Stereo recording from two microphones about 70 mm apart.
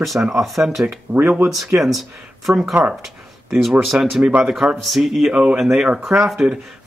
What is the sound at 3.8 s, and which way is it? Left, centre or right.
Speech, centre.